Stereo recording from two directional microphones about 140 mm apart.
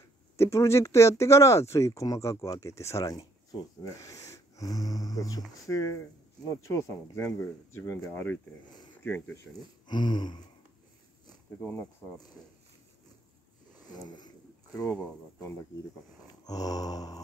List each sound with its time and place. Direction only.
0.4 s speech: 20° left (ahead or behind)
9.8 s a sound: 35° left (ahead or behind)
11.6 s speech: 15° left (ahead or behind)
14.0 s speech: 30° left (ahead or behind)
16.4 s speech: 25° left (ahead or behind)